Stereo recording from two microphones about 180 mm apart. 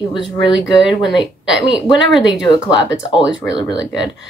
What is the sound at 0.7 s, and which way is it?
Speech, centre (ahead or behind).